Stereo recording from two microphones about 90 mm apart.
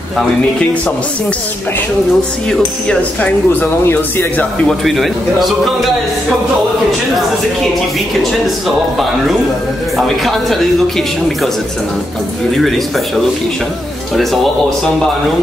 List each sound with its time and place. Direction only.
3.0 s speech: 15° left (ahead or behind)
4.6 s speech: centre (ahead or behind)
8.2 s speech: centre (ahead or behind)
12.5 s speech: centre (ahead or behind)
14.1 s speech: centre (ahead or behind)